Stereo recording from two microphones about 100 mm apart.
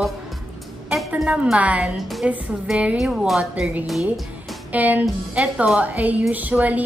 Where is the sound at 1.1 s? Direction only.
10° right (ahead or behind).